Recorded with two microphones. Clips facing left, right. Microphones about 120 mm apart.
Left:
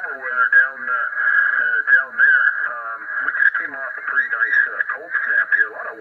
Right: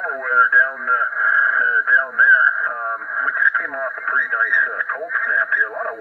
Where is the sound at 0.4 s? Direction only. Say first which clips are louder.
Right 1 dB; 40° right (ahead or behind).